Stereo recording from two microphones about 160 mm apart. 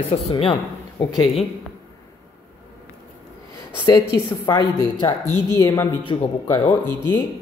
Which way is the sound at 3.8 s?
25° left (ahead or behind).